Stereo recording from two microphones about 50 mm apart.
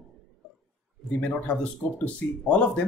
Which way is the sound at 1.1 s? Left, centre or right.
Left.